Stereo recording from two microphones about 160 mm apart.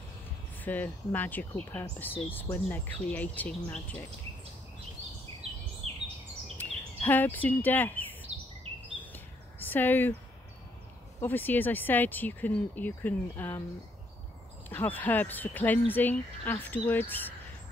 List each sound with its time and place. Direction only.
0.6 s speech: 10° left (ahead or behind)
5.4 s a sound: 40° right (ahead or behind)
6.6 s speech: 10° left (ahead or behind)
8.6 s chirp: 35° right (ahead or behind)
9.0 s a sound: 10° left (ahead or behind)
11.1 s speech: 10° left (ahead or behind)
14.7 s speech: 10° left (ahead or behind)